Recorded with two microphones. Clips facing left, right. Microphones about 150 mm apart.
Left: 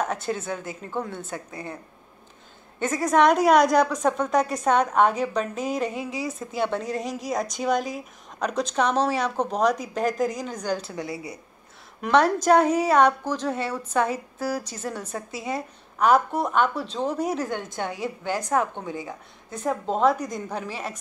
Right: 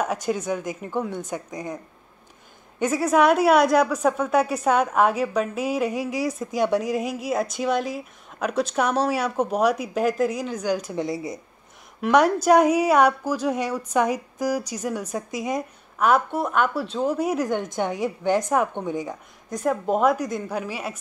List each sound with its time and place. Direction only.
0.0 s speech: 10° right (ahead or behind)
2.8 s a woman's voice: 10° right (ahead or behind)
16.0 s a woman's voice: 5° right (ahead or behind)